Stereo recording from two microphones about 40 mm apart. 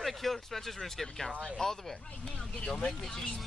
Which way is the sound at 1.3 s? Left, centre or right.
Left.